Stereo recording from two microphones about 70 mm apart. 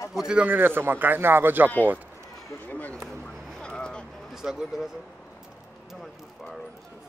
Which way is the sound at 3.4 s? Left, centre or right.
Centre.